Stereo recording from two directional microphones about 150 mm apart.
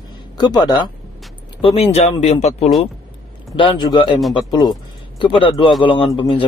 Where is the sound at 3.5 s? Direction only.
30° left (ahead or behind).